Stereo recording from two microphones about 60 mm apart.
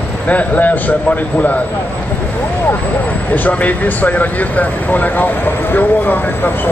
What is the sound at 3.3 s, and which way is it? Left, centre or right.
Speech, left.